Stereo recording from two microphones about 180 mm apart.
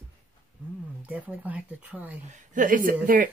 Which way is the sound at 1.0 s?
10° right (ahead or behind).